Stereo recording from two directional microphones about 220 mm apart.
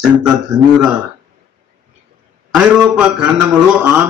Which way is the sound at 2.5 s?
5° right (ahead or behind).